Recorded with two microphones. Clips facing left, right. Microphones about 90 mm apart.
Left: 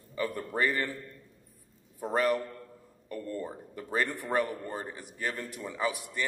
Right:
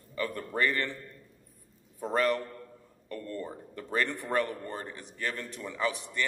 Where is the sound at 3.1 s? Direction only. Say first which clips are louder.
Left 1 dB; 15° left (ahead or behind).